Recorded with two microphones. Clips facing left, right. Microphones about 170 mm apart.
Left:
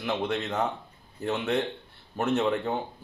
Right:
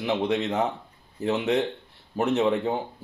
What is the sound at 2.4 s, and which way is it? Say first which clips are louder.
Speech: right 4 dB; 15° right (ahead or behind).